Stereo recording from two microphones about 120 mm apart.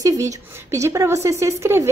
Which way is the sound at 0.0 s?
30° right (ahead or behind).